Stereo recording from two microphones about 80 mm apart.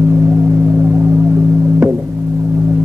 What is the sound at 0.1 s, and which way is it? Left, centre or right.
Music, right.